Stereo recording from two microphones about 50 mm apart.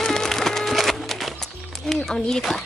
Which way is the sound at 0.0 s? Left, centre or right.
Centre.